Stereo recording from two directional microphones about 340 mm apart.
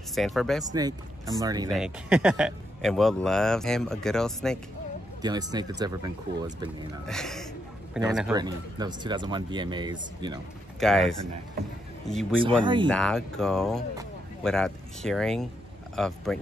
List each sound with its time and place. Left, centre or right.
0.1 s speech: centre
0.7 s speech: centre
5.2 s speech: centre
7.1 s speech: centre
10.8 s speech: centre
12.4 s speech: centre
12.8 s speech: centre